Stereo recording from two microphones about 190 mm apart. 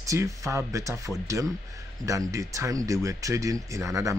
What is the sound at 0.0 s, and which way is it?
A man's voice, 15° right (ahead or behind).